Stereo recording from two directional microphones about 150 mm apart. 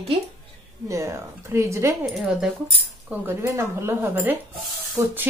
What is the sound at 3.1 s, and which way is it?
A woman's voice, 15° right (ahead or behind).